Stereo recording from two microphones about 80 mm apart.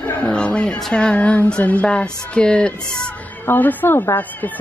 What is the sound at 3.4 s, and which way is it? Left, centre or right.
Speech, left.